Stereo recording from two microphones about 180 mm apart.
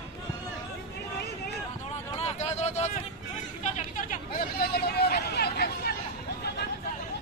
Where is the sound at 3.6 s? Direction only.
45° left (ahead or behind); by 5.9 s 65° left (ahead or behind).